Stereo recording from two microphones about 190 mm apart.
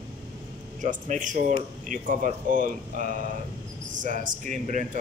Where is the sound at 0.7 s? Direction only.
40° right (ahead or behind).